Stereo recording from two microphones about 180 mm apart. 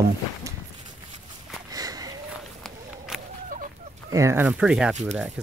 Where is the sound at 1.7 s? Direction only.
20° right (ahead or behind).